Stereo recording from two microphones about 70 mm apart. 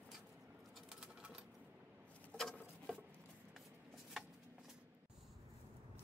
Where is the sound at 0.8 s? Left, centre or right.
Centre.